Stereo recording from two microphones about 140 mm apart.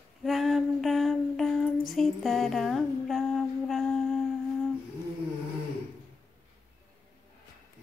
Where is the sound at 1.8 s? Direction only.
Centre (ahead or behind).